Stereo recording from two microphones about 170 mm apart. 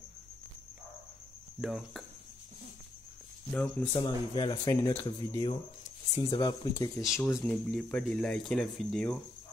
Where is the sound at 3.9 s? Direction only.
30° left (ahead or behind).